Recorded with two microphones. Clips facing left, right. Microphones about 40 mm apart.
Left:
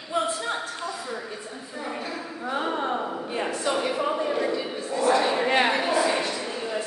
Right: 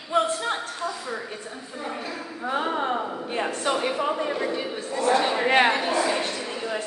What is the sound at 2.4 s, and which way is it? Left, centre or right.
Speech, centre.